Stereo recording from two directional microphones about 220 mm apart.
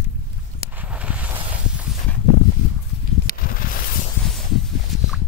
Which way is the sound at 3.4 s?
40° left (ahead or behind).